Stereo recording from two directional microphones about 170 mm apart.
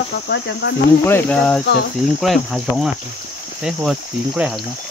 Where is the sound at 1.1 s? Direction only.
10° left (ahead or behind).